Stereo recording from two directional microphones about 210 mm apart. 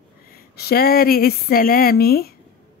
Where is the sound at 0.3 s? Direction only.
45° left (ahead or behind).